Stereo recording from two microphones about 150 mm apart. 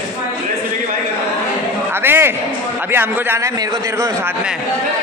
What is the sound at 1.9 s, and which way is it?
A man's voice, 15° right (ahead or behind).